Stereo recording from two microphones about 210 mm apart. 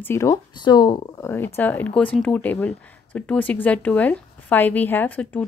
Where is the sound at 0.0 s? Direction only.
15° left (ahead or behind).